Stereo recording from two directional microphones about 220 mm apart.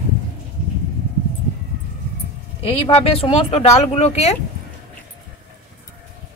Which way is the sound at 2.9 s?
25° left (ahead or behind).